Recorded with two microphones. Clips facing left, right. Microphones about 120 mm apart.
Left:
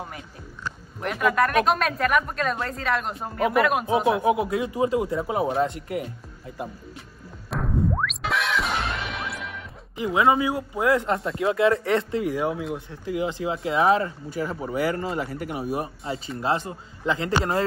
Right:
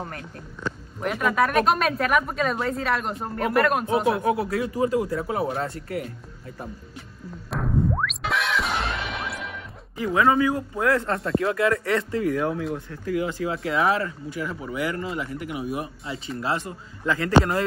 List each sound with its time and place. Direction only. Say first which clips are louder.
1.0 s speech: even; centre (ahead or behind)
4.1 s speech: left 2 dB; 20° left (ahead or behind)
7.5 s music: right 1 dB; centre (ahead or behind)
9.9 s a man's voice: even; 15° left (ahead or behind)
12.2 s a man's voice: right 1 dB; 15° left (ahead or behind)